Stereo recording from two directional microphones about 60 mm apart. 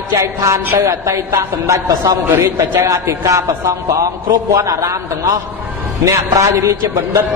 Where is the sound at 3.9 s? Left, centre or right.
Right.